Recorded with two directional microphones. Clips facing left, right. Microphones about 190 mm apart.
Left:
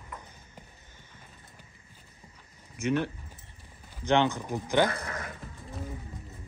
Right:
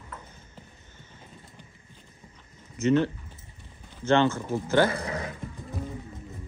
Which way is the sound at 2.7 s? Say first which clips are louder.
Right 6 dB; 10° left (ahead or behind).